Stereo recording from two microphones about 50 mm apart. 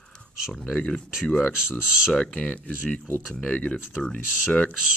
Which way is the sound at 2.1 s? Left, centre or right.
Centre.